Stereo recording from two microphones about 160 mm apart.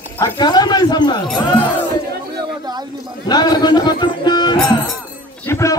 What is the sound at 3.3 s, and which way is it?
Speech, 25° left (ahead or behind).